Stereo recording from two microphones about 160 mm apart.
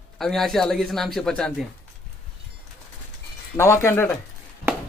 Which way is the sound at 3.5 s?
15° left (ahead or behind).